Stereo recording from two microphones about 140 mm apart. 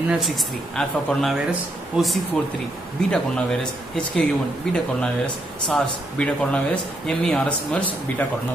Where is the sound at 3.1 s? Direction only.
5° left (ahead or behind).